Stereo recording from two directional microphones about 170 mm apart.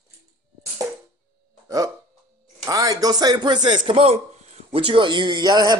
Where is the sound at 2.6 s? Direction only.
20° right (ahead or behind).